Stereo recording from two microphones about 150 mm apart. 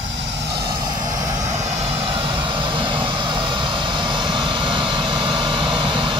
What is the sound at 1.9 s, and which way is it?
Vehicle, 35° right (ahead or behind).